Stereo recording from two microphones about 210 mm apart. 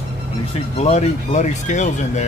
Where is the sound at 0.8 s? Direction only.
30° left (ahead or behind).